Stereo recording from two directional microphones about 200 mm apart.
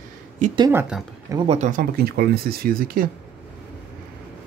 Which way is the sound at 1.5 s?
40° right (ahead or behind).